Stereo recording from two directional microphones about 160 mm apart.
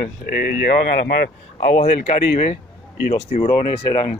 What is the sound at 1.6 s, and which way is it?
Speech, 40° left (ahead or behind).